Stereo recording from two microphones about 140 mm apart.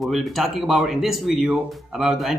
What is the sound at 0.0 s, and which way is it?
Speech, centre (ahead or behind).